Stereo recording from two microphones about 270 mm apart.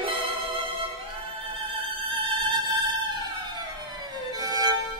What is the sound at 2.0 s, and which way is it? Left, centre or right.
Music, centre.